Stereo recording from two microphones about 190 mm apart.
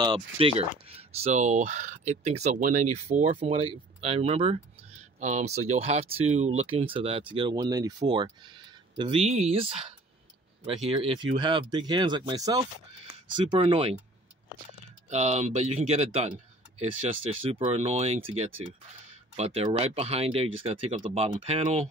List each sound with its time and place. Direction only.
0.0 s speech: 30° right (ahead or behind)
13.5 s speech: 30° right (ahead or behind)
15.0 s speech: 35° right (ahead or behind)